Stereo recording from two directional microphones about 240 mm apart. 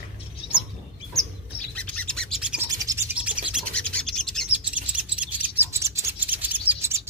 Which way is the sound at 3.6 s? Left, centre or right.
Centre.